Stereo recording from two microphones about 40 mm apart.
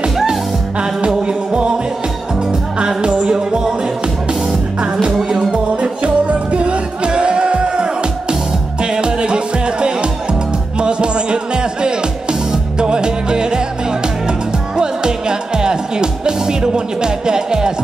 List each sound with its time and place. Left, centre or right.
0.3 s music: right
2.8 s music: right
5.5 s music: right
14.8 s music: centre